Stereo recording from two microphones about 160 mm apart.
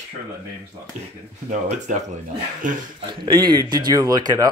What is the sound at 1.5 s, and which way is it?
Speech, 50° right (ahead or behind).